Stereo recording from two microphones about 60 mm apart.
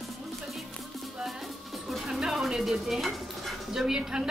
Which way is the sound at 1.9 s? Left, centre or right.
Centre.